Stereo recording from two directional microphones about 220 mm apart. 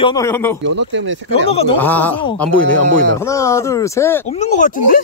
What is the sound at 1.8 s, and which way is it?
Speech, 10° left (ahead or behind).